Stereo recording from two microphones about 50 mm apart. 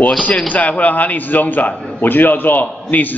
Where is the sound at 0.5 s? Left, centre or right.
Left.